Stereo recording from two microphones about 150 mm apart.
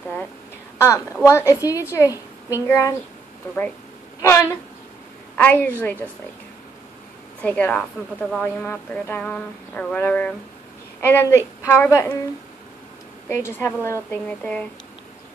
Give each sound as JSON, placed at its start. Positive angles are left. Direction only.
{"t": 0.7, "sound": "a woman's voice", "side_deg": 20}
{"t": 4.2, "sound": "a woman's voice", "side_deg": 20}
{"t": 7.4, "sound": "a woman's voice", "side_deg": 10}
{"t": 13.3, "sound": "a woman's voice", "side_deg": 15}